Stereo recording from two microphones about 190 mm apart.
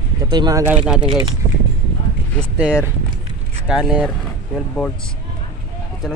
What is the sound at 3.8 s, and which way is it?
Speech, 5° right (ahead or behind).